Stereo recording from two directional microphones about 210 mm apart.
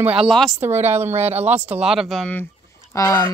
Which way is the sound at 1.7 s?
5° right (ahead or behind).